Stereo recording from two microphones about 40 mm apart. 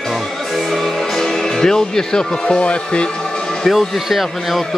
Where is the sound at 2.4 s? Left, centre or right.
Left.